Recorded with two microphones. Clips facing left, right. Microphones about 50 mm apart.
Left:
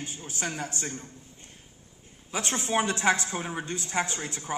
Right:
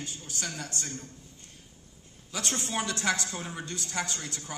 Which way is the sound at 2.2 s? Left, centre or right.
Left.